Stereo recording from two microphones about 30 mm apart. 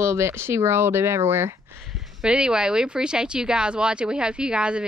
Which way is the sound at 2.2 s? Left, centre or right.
Right.